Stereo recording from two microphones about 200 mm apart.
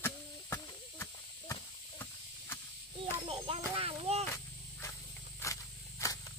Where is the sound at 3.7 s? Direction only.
30° right (ahead or behind).